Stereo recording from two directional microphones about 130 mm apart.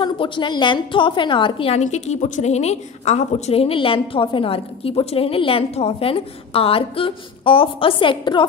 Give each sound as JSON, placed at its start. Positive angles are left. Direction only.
{"t": 0.0, "sound": "a woman's voice", "side_deg": 35}
{"t": 1.8, "sound": "a woman's voice", "side_deg": 60}